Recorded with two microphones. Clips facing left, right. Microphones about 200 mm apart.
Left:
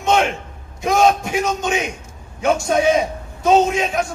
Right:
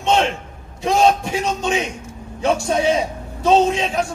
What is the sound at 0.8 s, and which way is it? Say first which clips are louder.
A man's voice: even; 30° right (ahead or behind).